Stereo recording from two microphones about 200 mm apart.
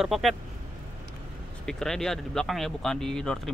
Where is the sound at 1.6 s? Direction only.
Centre (ahead or behind).